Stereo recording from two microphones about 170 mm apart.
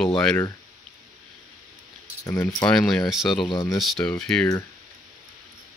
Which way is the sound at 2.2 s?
10° left (ahead or behind).